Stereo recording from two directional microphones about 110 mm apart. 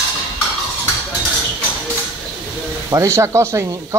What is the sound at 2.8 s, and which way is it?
Speech, 30° right (ahead or behind).